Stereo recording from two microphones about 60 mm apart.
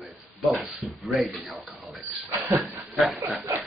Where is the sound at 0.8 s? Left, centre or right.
Centre.